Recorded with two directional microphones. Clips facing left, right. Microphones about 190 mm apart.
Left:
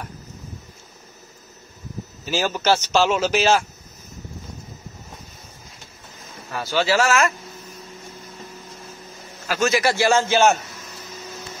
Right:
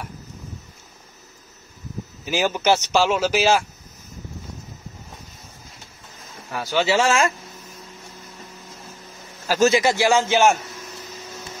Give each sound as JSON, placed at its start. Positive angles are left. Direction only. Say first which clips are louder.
{"t": 2.2, "sound": "speech", "louder": "right 1 dB", "side_deg": -15}
{"t": 6.5, "sound": "speech", "louder": "even", "side_deg": -15}
{"t": 9.7, "sound": "speech", "louder": "left 1 dB", "side_deg": -20}